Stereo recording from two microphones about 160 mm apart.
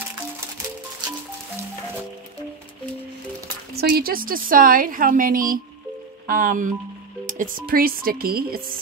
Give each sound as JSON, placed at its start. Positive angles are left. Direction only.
{"t": 3.7, "sound": "a woman's voice", "side_deg": -70}